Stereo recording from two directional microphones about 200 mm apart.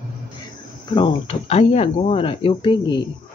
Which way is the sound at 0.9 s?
25° left (ahead or behind).